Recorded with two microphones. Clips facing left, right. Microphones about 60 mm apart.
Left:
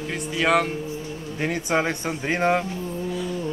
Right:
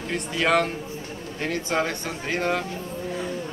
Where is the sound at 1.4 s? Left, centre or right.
Centre.